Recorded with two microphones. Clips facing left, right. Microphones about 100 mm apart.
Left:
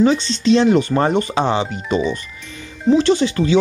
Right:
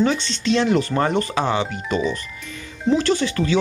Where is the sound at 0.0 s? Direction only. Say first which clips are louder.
Left 5 dB; 20° left (ahead or behind).